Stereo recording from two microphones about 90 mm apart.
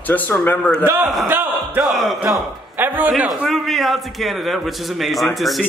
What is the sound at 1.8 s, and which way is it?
Speech, centre (ahead or behind).